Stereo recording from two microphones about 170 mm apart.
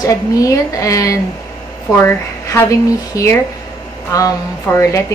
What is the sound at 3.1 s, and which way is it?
A woman's voice, 20° left (ahead or behind).